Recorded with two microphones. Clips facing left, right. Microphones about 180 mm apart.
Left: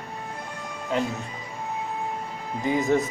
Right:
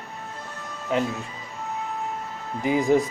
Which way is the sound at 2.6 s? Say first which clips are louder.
Right 2 dB; 10° right (ahead or behind).